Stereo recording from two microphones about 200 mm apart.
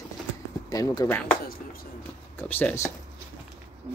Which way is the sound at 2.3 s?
10° left (ahead or behind).